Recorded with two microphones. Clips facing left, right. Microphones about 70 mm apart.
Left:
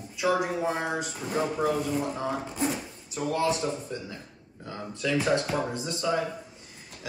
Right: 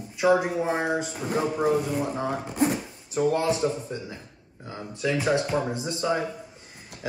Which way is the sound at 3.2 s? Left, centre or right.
Right.